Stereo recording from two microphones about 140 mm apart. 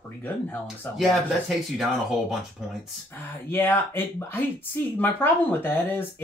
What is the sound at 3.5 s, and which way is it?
Speech, 15° left (ahead or behind).